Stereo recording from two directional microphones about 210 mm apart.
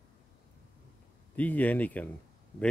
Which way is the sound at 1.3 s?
10° left (ahead or behind).